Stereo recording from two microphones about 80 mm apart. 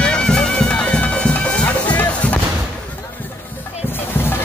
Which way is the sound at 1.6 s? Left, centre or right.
Centre.